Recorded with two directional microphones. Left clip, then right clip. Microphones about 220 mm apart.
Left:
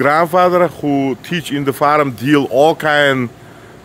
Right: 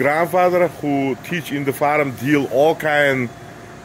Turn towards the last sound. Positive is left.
turn(degrees=40)  # may be behind; listen again after turning